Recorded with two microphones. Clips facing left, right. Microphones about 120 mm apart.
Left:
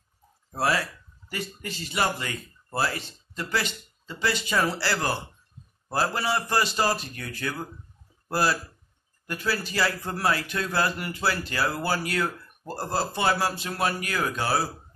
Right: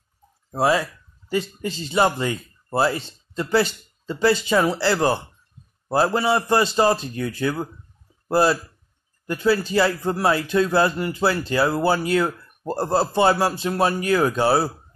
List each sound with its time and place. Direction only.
0.6 s a man's voice: 20° right (ahead or behind)